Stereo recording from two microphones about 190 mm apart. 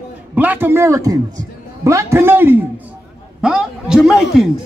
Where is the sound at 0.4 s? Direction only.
10° right (ahead or behind).